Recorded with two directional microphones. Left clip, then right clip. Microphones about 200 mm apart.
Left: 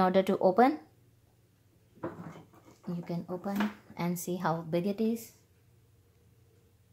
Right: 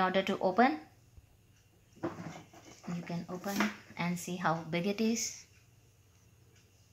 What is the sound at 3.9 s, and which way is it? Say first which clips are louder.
A woman's voice: left 2 dB; 50° left (ahead or behind).